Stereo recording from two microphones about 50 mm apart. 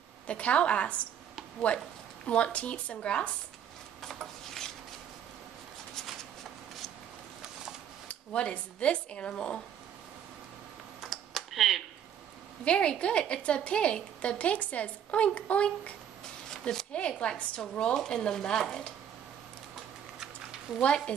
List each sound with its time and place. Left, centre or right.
0.3 s a woman's voice: left
4.0 s rub: centre
8.1 s a woman's voice: left
11.0 s computer keyboard: centre
12.6 s a woman's voice: left
16.4 s a sound: centre
17.9 s speech: centre
20.8 s speech: centre